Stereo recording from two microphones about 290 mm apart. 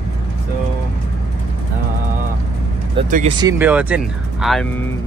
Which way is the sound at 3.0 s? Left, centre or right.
Right.